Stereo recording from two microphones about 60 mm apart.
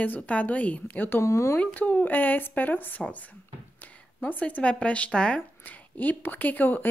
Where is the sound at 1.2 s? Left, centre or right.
Left.